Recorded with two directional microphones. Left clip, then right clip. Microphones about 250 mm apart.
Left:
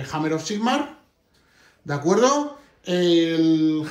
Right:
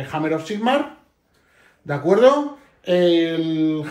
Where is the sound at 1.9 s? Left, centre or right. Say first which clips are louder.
Right 5 dB; centre.